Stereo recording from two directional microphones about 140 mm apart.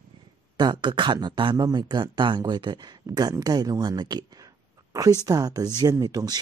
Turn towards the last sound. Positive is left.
turn(degrees=-25)  # may be behind; listen again after turning